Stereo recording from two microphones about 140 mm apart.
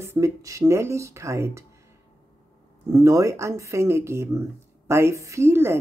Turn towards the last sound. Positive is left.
turn(degrees=-15)  # may be behind; listen again after turning